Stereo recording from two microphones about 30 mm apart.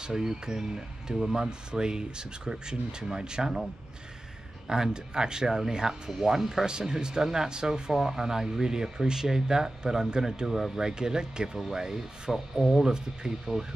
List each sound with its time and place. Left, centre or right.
0.0 s speech: centre
4.6 s speech: right
6.6 s speech: right
7.9 s speech: centre
10.9 s speech: right
12.5 s speech: centre
12.8 s speech: right